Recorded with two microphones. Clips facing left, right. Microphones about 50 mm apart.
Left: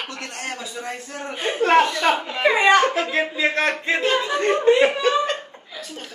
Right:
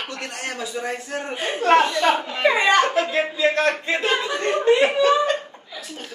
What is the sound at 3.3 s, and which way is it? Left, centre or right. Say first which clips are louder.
Speech: right 1 dB; left.